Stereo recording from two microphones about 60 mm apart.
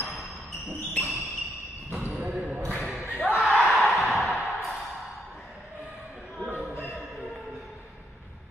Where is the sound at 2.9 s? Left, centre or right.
Centre.